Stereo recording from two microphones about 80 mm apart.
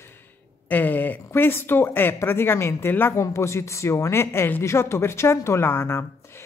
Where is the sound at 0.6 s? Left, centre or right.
Left.